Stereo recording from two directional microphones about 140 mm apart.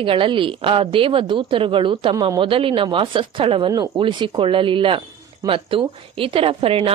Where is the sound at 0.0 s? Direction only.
40° right (ahead or behind).